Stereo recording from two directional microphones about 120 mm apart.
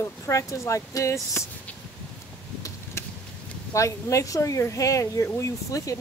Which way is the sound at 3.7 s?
25° left (ahead or behind).